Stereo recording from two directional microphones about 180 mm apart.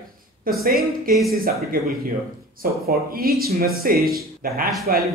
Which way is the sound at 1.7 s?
50° right (ahead or behind).